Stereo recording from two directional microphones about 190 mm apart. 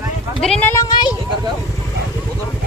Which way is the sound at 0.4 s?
5° left (ahead or behind).